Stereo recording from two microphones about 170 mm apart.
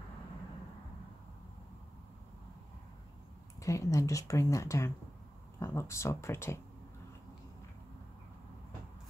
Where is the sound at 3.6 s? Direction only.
20° left (ahead or behind).